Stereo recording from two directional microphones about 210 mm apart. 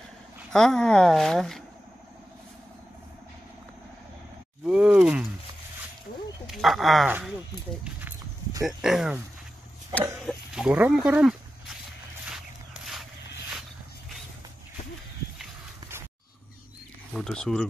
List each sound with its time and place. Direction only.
0.5 s speech: centre (ahead or behind)
4.6 s speech: 5° right (ahead or behind)
6.4 s speech: centre (ahead or behind)
8.6 s speech: centre (ahead or behind)
10.2 s speech: 5° right (ahead or behind)
17.1 s speech: 5° left (ahead or behind)